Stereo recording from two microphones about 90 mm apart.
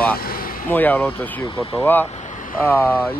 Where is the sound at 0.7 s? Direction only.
20° left (ahead or behind).